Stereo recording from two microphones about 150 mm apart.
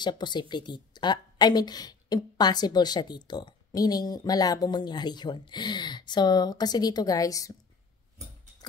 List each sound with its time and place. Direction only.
0.0 s a woman's voice: 30° left (ahead or behind)